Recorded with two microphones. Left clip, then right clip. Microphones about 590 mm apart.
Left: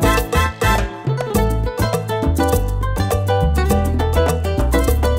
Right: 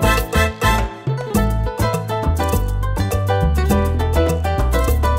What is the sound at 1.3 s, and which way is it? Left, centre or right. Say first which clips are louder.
Music: left 1 dB; left.